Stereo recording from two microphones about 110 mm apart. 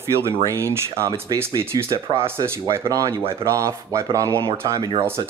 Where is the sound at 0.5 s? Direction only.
25° right (ahead or behind).